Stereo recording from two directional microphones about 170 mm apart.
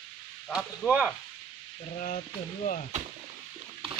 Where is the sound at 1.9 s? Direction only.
45° left (ahead or behind).